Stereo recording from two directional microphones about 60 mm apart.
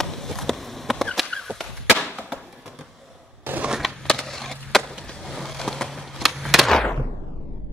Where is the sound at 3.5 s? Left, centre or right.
Right.